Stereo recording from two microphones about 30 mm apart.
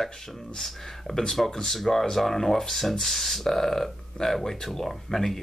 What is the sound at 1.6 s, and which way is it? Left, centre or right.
Speech, centre.